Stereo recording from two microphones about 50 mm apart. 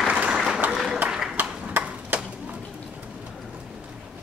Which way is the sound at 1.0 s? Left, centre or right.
Centre.